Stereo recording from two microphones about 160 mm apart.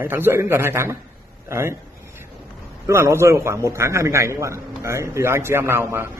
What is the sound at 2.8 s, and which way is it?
A man's voice, 15° right (ahead or behind).